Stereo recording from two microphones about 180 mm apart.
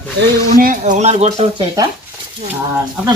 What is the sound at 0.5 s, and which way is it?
Speech, 50° right (ahead or behind).